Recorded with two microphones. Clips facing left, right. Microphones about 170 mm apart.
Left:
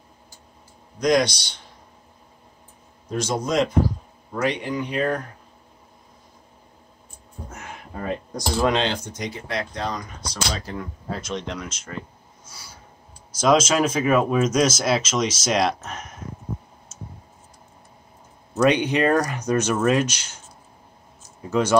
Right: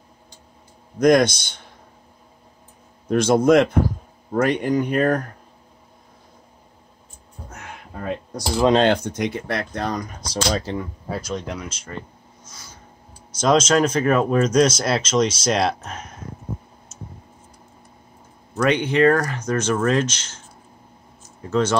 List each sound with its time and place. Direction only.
0.9 s speech: 50° right (ahead or behind)
3.1 s speech: 55° right (ahead or behind)
8.0 s speech: 10° right (ahead or behind)
8.7 s speech: 55° right (ahead or behind)
10.3 s speech: 30° right (ahead or behind)
11.3 s speech: 5° right (ahead or behind)
13.4 s speech: 5° left (ahead or behind)
18.5 s speech: 20° left (ahead or behind)
21.5 s speech: 10° left (ahead or behind)